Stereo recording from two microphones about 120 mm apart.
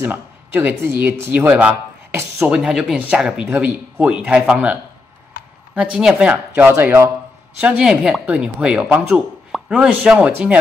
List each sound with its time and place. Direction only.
0.0 s speech: 15° right (ahead or behind)
5.8 s speech: 5° right (ahead or behind)